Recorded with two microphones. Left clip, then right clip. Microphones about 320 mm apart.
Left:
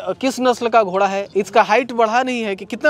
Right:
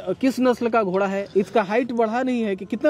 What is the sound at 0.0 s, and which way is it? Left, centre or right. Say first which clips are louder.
Speech: left 3 dB; left.